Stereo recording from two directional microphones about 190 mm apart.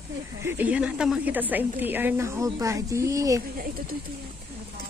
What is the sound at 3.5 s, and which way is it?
Speech, 50° right (ahead or behind).